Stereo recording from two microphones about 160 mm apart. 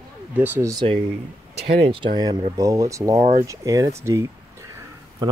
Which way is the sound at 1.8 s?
35° right (ahead or behind).